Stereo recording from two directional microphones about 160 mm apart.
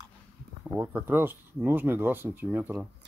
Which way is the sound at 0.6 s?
10° right (ahead or behind).